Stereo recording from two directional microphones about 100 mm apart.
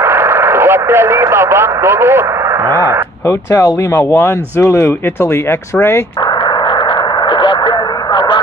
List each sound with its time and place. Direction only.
0.0 s speech: 25° right (ahead or behind)
3.3 s speech: 30° left (ahead or behind)
6.2 s radio: 50° left (ahead or behind)